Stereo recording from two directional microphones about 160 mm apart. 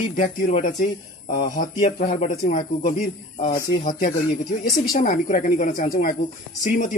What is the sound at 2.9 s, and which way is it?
Speech, 60° left (ahead or behind).